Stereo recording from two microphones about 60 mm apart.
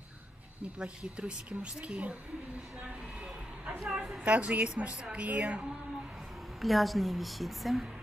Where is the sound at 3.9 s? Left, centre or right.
Centre.